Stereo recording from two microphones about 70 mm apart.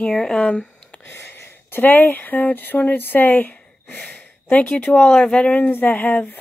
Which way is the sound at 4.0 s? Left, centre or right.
Centre.